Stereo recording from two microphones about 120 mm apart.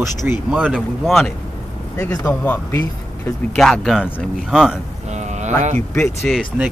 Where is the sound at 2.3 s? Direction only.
15° left (ahead or behind).